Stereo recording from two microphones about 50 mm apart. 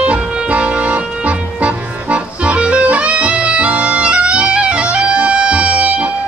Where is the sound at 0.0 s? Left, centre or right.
Right.